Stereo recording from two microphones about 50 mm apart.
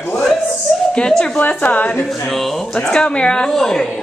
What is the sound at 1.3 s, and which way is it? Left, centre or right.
Speech, left.